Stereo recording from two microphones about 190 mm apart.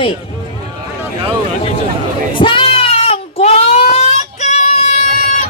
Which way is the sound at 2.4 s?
25° left (ahead or behind).